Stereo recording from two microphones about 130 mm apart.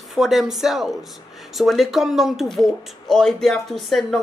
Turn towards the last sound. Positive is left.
turn(degrees=0)  # may be behind; listen again after turning